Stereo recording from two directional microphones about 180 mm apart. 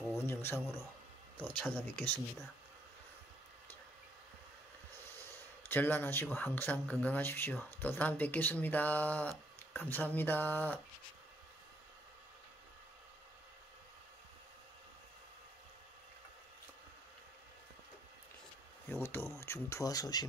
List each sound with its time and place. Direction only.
0.1 s a sound: 15° left (ahead or behind)
1.4 s speech: 10° left (ahead or behind)
5.7 s speech: 10° left (ahead or behind)
18.9 s speech: 10° left (ahead or behind)